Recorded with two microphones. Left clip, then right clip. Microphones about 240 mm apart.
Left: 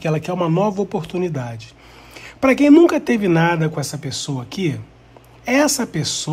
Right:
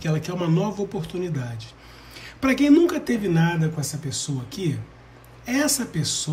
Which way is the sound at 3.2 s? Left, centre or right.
Left.